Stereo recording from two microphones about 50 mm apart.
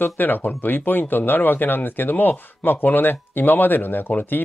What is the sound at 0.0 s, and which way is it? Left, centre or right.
Speech, left.